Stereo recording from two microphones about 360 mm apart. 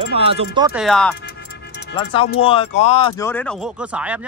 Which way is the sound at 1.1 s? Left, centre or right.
Left.